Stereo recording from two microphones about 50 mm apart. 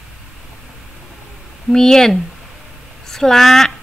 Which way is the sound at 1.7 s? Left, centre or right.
Centre.